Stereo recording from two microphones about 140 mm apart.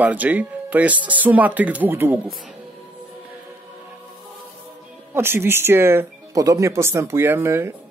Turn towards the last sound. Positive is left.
turn(degrees=-15)  # may be behind; listen again after turning